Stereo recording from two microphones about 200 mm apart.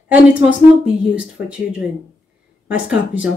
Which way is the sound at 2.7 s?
5° right (ahead or behind).